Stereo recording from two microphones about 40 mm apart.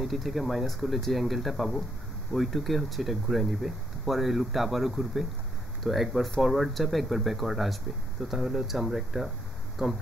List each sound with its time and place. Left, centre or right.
0.0 s speech: centre
9.8 s speech: centre